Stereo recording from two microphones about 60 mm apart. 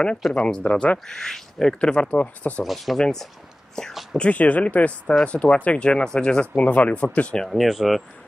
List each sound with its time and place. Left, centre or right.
0.3 s speech: centre
0.9 s speech: centre
2.6 s speech: centre
4.2 s speech: left
7.4 s speech: centre